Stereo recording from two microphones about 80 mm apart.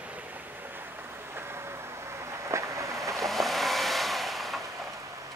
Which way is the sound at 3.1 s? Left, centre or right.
Centre.